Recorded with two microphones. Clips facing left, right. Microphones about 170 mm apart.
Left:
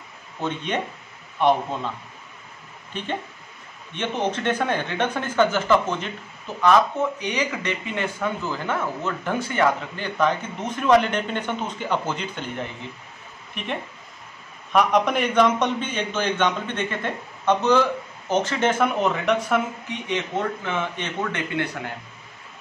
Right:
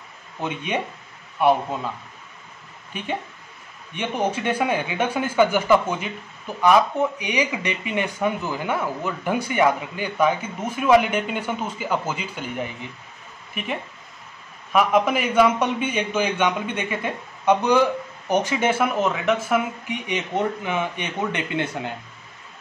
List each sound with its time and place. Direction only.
0.4 s speech: 10° right (ahead or behind)
2.9 s speech: 10° right (ahead or behind)